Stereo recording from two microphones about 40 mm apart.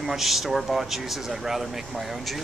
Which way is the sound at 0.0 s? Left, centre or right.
Centre.